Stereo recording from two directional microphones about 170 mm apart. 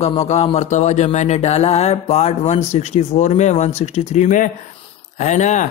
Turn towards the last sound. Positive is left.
turn(degrees=45)  # may be behind; listen again after turning